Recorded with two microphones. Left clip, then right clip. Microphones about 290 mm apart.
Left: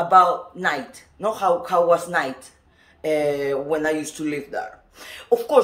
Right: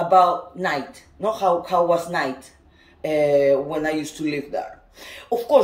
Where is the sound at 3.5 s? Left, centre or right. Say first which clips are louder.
Right 2 dB; left.